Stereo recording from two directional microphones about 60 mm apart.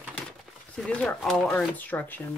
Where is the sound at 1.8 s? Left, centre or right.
Left.